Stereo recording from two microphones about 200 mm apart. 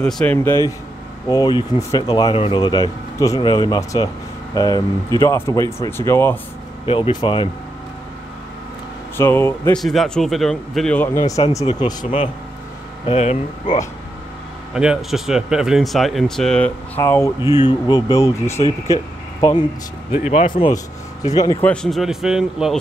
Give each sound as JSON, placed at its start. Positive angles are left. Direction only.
{"t": 0.0, "sound": "speech", "side_deg": 5}
{"t": 6.9, "sound": "speech", "side_deg": 25}
{"t": 9.1, "sound": "speech", "side_deg": 10}
{"t": 14.7, "sound": "speech", "side_deg": -5}
{"t": 17.4, "sound": "speech", "side_deg": -15}
{"t": 17.6, "sound": "speech", "side_deg": 20}
{"t": 20.2, "sound": "speech", "side_deg": 30}
{"t": 21.6, "sound": "speech", "side_deg": 0}